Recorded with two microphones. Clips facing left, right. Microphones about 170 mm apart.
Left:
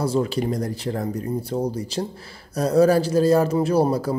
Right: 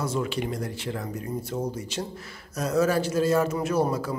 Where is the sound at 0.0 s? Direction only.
35° left (ahead or behind).